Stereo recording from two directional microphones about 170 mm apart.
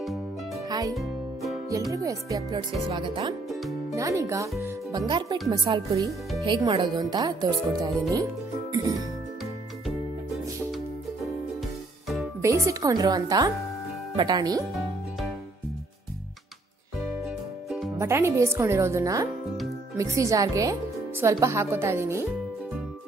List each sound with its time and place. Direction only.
0.7 s music: 20° right (ahead or behind)
0.9 s music: centre (ahead or behind)
1.9 s speech: 20° right (ahead or behind)
9.8 s music: centre (ahead or behind)
12.4 s a woman's voice: 15° right (ahead or behind)
17.9 s speech: 15° right (ahead or behind)